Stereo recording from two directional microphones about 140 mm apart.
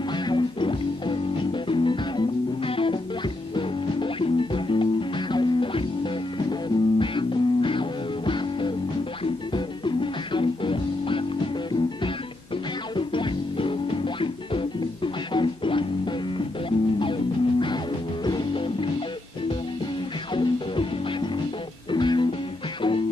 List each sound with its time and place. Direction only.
0.1 s music: 35° left (ahead or behind)
12.9 s music: 35° left (ahead or behind)
20.3 s music: 35° left (ahead or behind)